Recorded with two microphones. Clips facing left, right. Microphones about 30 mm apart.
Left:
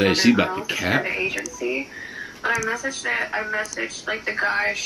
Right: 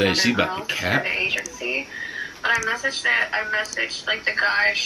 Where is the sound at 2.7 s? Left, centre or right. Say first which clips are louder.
Right 3 dB; right.